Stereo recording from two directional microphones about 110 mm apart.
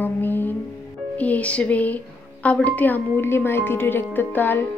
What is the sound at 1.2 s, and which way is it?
A woman's voice, 15° left (ahead or behind).